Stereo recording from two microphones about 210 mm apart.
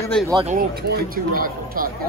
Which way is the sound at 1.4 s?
45° right (ahead or behind).